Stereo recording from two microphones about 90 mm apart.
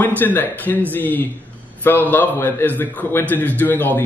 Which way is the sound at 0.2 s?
20° left (ahead or behind).